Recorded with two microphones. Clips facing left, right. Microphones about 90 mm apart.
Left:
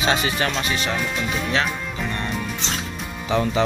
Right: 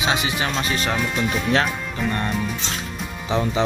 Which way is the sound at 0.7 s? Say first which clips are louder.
Right 1 dB; 40° right (ahead or behind).